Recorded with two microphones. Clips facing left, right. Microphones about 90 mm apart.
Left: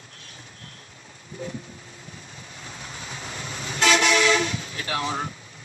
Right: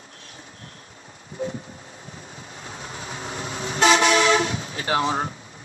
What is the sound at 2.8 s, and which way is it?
Toot, 35° right (ahead or behind).